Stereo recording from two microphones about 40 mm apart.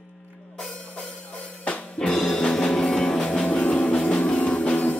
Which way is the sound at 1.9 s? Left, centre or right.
Centre.